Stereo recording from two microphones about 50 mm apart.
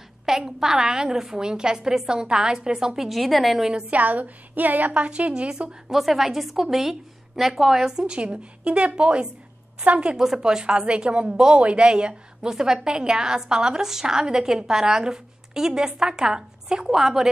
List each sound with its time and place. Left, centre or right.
0.2 s speech: centre
3.1 s a woman's voice: centre
3.9 s a woman's voice: right
5.9 s a woman's voice: centre; by 10.1 s right
10.1 s speech: centre